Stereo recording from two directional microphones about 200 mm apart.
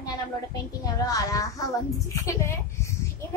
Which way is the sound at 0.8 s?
15° left (ahead or behind).